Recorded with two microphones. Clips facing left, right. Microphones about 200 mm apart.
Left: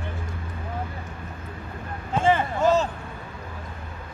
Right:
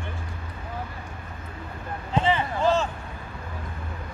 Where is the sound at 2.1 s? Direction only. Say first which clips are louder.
Left 2 dB; 45° left (ahead or behind).